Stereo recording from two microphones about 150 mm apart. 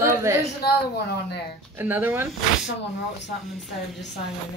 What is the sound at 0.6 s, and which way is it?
Speech, 90° left.